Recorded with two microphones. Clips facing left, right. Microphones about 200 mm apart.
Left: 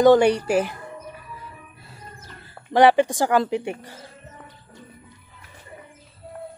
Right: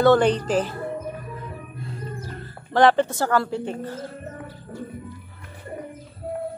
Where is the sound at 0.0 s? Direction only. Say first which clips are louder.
Left 2 dB; 15° left (ahead or behind).